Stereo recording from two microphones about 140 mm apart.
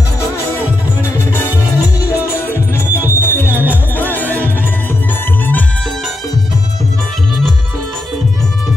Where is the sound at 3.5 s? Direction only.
15° right (ahead or behind).